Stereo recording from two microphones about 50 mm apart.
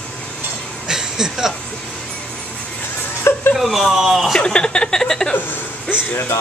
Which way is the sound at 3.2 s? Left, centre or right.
Left.